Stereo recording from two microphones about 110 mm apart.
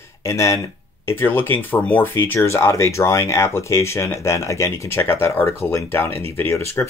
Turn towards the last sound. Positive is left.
turn(degrees=25)  # may be behind; listen again after turning